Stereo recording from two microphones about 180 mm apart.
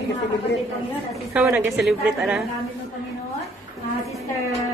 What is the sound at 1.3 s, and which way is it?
A woman's voice, 5° right (ahead or behind).